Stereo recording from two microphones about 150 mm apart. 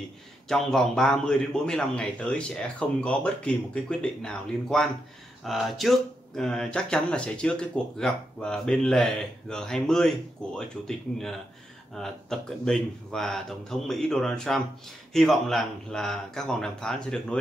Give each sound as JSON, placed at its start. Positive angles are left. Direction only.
{"t": 0.5, "sound": "speech", "side_deg": 0}